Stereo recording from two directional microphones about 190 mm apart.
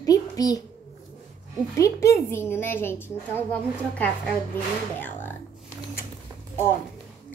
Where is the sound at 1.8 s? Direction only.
15° left (ahead or behind).